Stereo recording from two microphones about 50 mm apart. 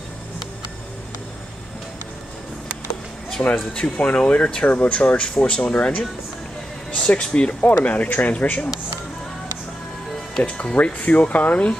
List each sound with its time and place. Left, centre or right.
3.5 s speech: left
4.6 s speech: left
10.4 s speech: left